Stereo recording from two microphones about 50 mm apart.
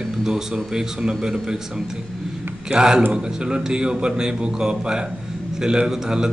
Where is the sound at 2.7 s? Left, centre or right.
Centre.